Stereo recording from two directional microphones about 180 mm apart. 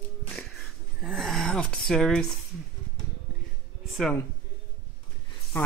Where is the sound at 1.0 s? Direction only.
Centre (ahead or behind).